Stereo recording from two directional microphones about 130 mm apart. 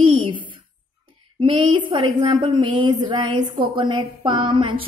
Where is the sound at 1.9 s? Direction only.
35° right (ahead or behind).